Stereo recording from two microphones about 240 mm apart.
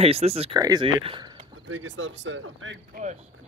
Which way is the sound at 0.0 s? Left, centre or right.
Right.